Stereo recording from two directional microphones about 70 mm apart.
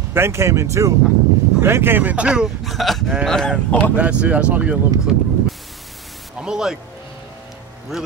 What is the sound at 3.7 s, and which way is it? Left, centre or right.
Speech, centre.